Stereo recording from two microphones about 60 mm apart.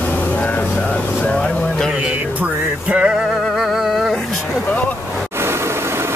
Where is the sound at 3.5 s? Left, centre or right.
Centre.